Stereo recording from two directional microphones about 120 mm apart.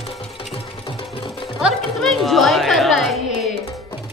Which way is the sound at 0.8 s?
45° left (ahead or behind).